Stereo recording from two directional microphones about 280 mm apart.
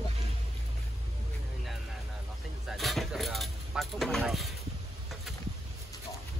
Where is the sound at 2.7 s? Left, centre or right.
Centre.